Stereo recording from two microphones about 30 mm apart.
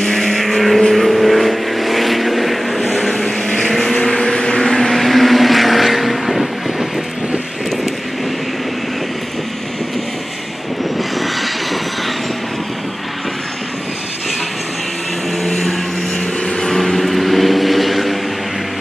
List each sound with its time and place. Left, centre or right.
0.0 s vehicle: centre
3.1 s vehicle: centre
11.0 s vehicle: centre
15.4 s a sound: centre
16.6 s vehicle: centre